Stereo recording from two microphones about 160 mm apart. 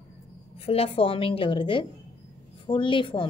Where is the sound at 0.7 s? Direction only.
35° left (ahead or behind).